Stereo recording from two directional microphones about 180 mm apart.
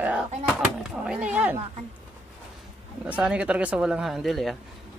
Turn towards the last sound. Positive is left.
turn(degrees=0)  # may be behind; listen again after turning